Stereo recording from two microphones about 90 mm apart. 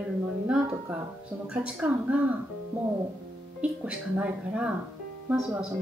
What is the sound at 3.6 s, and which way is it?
Speech, 15° right (ahead or behind).